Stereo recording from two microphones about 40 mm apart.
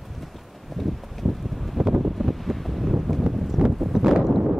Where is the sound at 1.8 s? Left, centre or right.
Centre.